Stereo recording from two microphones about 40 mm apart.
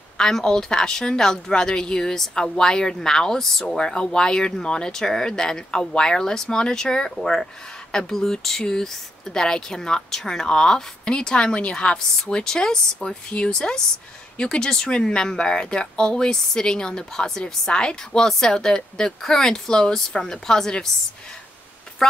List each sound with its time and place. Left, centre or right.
0.2 s speech: centre
3.6 s speech: left